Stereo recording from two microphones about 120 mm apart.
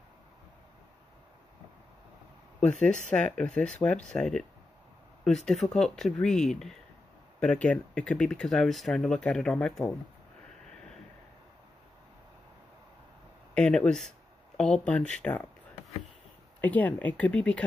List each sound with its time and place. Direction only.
2.8 s speech: 10° left (ahead or behind)
13.6 s speech: 10° left (ahead or behind)
16.6 s speech: 15° left (ahead or behind)